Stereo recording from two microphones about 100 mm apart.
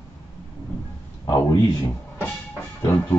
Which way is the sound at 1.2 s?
35° left (ahead or behind).